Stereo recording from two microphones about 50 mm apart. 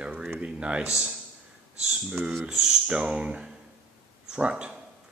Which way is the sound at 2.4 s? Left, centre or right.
Centre.